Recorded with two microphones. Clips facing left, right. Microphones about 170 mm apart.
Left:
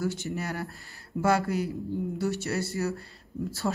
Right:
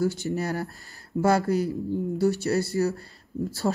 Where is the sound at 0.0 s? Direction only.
35° right (ahead or behind).